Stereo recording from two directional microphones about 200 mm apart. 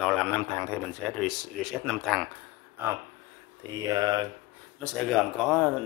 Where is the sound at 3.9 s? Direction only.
20° right (ahead or behind).